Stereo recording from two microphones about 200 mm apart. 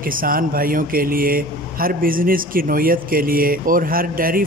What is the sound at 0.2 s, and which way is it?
Speech, 45° right (ahead or behind).